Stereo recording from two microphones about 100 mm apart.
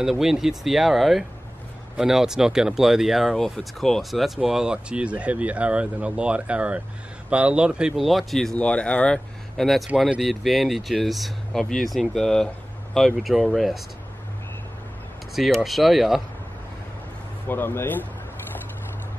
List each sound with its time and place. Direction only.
0.0 s speech: 5° right (ahead or behind)
15.3 s speech: centre (ahead or behind)
17.5 s speech: 20° left (ahead or behind)